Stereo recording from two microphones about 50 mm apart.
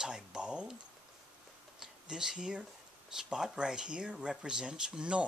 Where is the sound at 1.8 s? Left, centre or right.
Centre.